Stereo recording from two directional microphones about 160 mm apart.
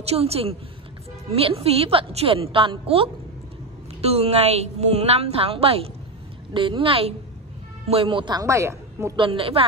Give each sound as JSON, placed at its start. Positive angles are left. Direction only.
{"t": 0.0, "sound": "a woman's voice", "side_deg": -40}
{"t": 9.1, "sound": "a woman's voice", "side_deg": -30}